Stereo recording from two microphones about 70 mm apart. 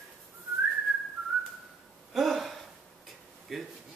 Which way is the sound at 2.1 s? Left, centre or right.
Centre.